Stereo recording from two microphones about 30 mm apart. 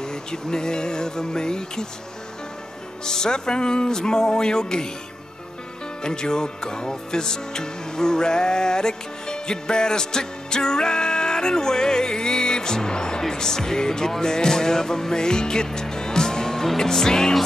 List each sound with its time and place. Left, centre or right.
0.0 s music: left
3.1 s music: left
6.0 s music: left